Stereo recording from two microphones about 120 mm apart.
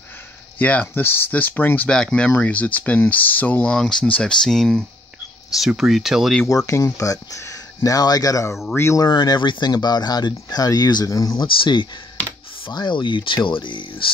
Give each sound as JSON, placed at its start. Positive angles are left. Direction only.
{"t": 0.6, "sound": "speech", "side_deg": 15}
{"t": 6.5, "sound": "speech", "side_deg": 25}
{"t": 9.0, "sound": "speech", "side_deg": 35}
{"t": 11.3, "sound": "speech", "side_deg": 40}